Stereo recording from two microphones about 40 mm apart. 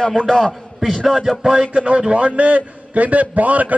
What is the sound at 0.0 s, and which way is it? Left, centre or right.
Speech, centre.